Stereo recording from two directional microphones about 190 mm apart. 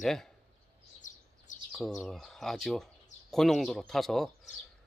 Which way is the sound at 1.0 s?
40° left (ahead or behind).